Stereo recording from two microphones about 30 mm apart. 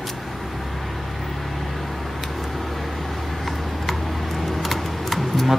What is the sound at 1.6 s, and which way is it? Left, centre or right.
Vehicle, centre.